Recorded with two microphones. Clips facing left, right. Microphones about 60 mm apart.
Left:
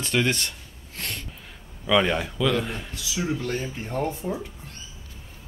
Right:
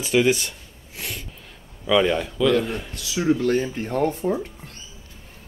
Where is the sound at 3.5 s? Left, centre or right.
Right.